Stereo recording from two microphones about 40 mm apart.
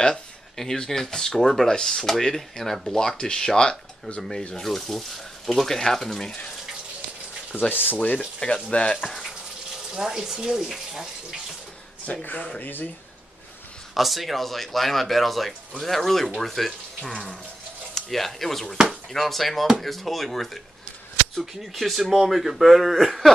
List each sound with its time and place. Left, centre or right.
0.0 s a sound: centre
0.8 s speech: centre
7.7 s speech: left
8.6 s speech: left
9.8 s speech: centre
12.1 s speech: left
13.9 s speech: centre
17.1 s water tap: left
17.9 s speech: centre
21.7 s speech: centre